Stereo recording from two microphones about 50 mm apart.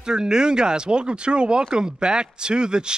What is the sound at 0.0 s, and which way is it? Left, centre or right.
Speech, centre.